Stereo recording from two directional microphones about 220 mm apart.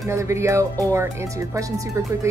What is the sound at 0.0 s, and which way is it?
A woman's voice, 15° right (ahead or behind).